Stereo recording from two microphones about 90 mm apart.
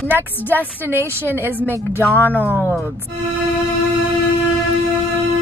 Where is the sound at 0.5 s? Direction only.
25° right (ahead or behind).